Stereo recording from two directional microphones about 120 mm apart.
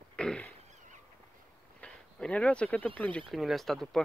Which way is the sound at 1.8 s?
10° left (ahead or behind).